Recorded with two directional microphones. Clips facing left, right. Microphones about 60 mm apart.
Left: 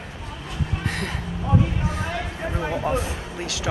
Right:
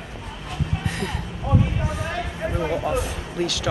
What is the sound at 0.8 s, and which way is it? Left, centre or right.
Vehicle, left.